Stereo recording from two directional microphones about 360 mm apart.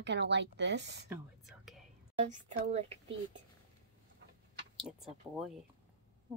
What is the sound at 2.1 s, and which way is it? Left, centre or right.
Speech, centre.